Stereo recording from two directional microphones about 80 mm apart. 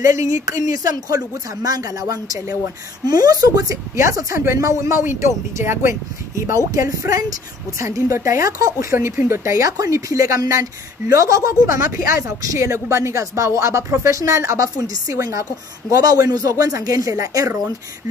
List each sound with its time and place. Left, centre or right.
0.0 s speech: right
5.6 s speech: right
8.9 s speech: right